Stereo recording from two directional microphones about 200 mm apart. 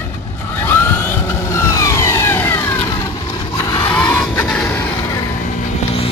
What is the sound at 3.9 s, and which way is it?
Vehicle, 5° left (ahead or behind).